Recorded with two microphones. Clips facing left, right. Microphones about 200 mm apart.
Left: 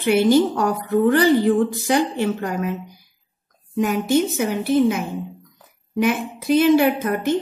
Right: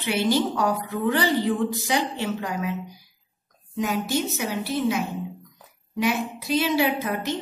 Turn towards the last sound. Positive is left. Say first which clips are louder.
# left 6 dB
turn(degrees=50)  # may be behind; listen again after turning